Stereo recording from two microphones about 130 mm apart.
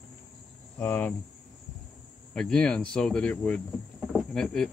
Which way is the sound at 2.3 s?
5° left (ahead or behind).